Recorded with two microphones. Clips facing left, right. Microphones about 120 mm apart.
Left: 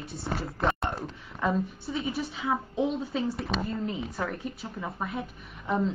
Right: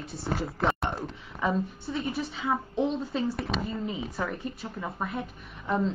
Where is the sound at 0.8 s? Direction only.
Centre (ahead or behind).